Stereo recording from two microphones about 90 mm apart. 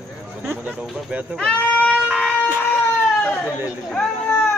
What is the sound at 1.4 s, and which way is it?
Speech, 15° left (ahead or behind).